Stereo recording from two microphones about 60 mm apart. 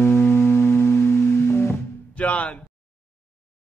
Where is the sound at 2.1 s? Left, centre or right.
Left.